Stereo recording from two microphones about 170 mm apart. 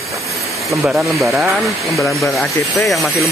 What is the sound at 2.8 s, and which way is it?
Speech, centre (ahead or behind).